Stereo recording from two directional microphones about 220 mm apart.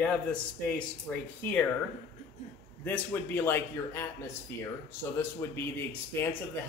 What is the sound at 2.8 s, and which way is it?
A man's voice, 10° left (ahead or behind).